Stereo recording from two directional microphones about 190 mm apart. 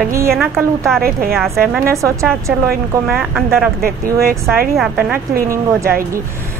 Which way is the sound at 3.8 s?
50° right (ahead or behind).